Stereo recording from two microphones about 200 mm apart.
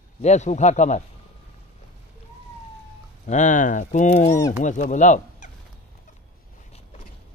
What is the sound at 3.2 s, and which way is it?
Speech, 40° left (ahead or behind).